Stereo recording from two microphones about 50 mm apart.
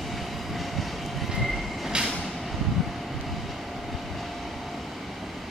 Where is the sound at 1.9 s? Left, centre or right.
Centre.